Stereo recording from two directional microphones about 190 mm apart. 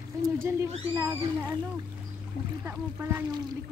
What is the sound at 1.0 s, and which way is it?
Speech, 15° right (ahead or behind).